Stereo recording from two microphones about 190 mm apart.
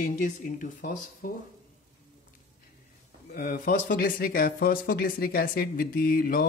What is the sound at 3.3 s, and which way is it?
Speech, 50° left (ahead or behind).